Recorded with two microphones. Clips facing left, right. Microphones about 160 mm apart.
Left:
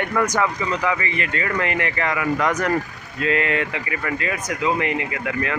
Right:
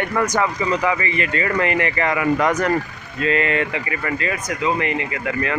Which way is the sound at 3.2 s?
5° left (ahead or behind).